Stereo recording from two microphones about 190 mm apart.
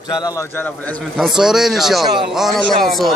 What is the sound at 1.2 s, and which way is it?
A man's voice, centre (ahead or behind).